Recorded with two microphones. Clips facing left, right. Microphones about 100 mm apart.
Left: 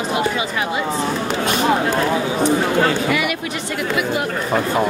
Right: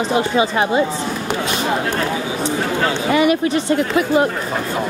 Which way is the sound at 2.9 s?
30° right (ahead or behind).